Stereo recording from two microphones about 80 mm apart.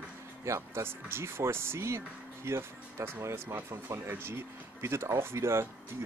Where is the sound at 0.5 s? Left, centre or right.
Right.